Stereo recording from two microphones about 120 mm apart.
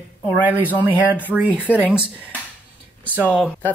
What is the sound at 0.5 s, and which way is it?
Speech, 15° right (ahead or behind).